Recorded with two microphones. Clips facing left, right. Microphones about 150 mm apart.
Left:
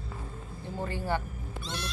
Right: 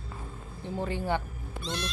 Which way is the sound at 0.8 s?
15° right (ahead or behind).